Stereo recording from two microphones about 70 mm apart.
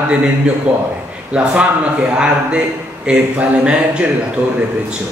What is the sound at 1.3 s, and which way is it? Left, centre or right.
Speech, centre.